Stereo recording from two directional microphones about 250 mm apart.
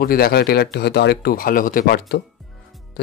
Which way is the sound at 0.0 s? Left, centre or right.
Left.